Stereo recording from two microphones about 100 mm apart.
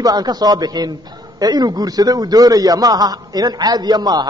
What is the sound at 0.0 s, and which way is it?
A man's voice, 40° right (ahead or behind).